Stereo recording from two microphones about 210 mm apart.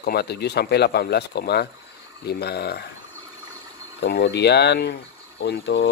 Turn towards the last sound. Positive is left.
turn(degrees=55)  # may be behind; listen again after turning